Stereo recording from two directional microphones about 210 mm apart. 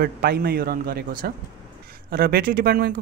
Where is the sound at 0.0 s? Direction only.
45° right (ahead or behind).